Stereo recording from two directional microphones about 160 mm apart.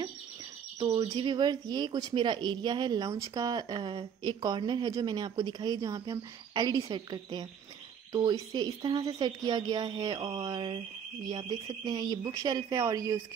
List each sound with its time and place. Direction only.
0.7 s a woman's voice: 25° right (ahead or behind)